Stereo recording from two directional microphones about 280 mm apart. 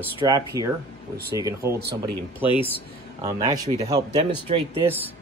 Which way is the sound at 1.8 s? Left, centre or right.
Right.